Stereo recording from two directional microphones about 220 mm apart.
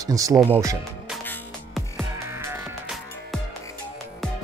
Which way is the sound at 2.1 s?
10° right (ahead or behind).